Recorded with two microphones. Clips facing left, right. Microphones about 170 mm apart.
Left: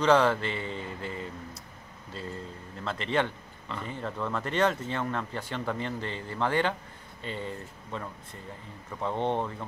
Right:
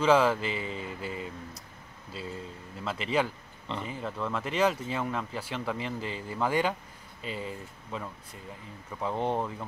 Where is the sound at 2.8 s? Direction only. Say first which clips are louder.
Even; 5° right (ahead or behind).